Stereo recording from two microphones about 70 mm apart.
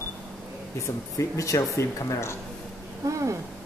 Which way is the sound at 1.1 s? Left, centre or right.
Left.